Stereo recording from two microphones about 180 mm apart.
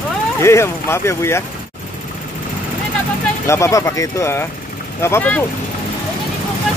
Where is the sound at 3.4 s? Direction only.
15° left (ahead or behind).